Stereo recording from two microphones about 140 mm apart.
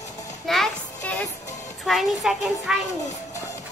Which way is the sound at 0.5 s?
Centre (ahead or behind).